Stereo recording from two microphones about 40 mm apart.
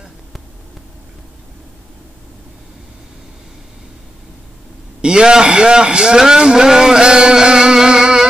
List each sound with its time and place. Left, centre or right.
5.0 s a man's voice: right